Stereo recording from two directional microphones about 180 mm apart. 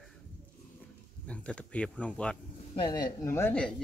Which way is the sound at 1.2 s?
5° left (ahead or behind).